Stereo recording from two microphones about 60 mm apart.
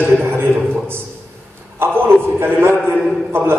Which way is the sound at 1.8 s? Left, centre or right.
Right.